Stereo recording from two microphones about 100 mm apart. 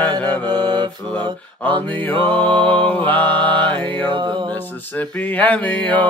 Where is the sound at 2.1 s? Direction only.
55° right (ahead or behind).